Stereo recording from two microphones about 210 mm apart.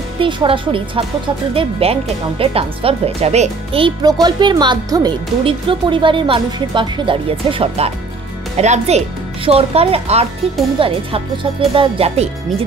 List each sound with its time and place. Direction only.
0.2 s speech: 25° right (ahead or behind)